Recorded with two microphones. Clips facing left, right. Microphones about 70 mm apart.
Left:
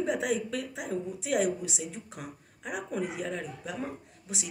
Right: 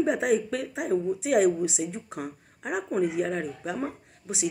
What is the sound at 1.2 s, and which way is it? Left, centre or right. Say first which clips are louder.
A woman's voice: right 5 dB; right.